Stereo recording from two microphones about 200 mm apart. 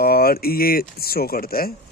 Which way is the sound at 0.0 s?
50° left (ahead or behind).